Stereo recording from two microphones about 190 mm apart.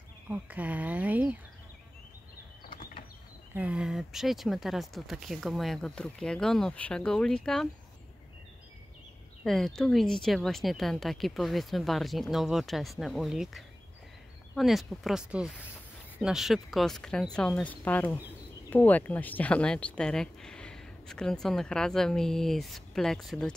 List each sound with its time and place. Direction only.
0.3 s speech: 10° right (ahead or behind)
3.5 s speech: 5° right (ahead or behind)
9.4 s speech: centre (ahead or behind)